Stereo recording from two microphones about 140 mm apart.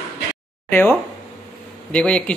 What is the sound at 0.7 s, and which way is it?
A man's voice, 15° left (ahead or behind).